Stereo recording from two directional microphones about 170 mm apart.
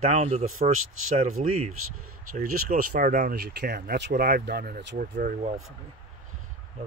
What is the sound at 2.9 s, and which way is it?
Speech, 50° right (ahead or behind).